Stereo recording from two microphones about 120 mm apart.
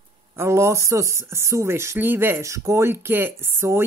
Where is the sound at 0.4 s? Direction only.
25° right (ahead or behind).